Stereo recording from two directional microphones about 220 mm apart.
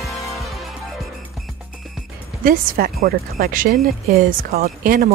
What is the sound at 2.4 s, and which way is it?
Speech, 40° right (ahead or behind).